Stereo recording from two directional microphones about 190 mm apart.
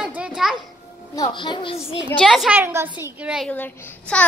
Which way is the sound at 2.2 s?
Centre (ahead or behind).